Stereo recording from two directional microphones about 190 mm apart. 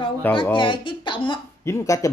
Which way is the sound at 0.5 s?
25° left (ahead or behind).